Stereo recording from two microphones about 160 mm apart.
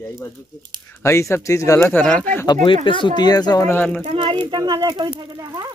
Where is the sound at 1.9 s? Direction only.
5° left (ahead or behind).